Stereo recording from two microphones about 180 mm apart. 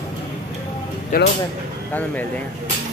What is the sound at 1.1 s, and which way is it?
Speech, 55° left (ahead or behind).